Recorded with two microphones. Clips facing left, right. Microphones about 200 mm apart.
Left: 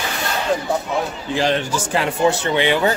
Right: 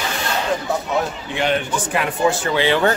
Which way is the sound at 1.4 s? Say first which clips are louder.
Left 1 dB; 30° left (ahead or behind).